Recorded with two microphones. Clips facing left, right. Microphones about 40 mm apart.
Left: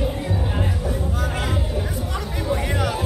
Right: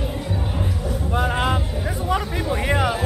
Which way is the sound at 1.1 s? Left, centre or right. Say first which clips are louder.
Right 5 dB; right.